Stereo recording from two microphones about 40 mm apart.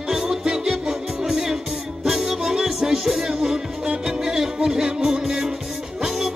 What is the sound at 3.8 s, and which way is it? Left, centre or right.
Music, right.